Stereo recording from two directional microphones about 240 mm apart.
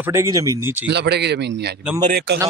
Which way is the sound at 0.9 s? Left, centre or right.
Right.